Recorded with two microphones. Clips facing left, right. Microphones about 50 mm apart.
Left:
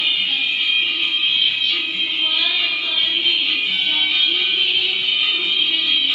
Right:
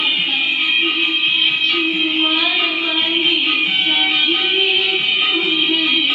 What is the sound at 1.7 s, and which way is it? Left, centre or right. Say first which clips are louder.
Music: right 5 dB; right.